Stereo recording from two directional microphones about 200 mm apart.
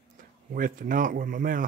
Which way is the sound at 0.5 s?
45° right (ahead or behind).